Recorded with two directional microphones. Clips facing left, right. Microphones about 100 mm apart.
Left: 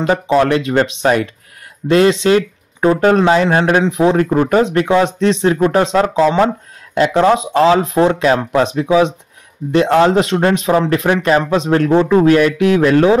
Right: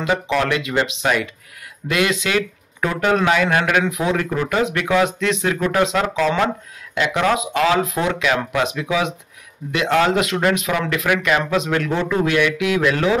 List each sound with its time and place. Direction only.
0.0 s speech: 40° left (ahead or behind)